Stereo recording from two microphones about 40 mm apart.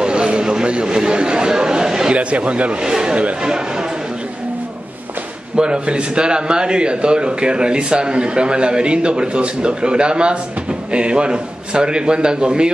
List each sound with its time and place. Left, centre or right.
0.0 s a sound: right
0.8 s chatter: centre
2.1 s a man's voice: right
2.9 s speech: centre
5.6 s a man's voice: right